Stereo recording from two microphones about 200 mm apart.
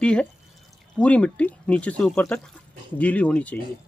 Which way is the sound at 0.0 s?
5° left (ahead or behind).